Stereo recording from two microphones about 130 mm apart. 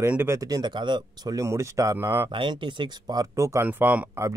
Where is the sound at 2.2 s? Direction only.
40° right (ahead or behind).